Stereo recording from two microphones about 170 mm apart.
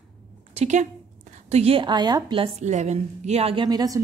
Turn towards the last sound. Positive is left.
turn(degrees=-20)  # may be behind; listen again after turning